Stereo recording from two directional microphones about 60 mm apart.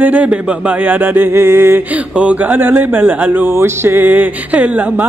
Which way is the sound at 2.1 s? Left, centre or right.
Right.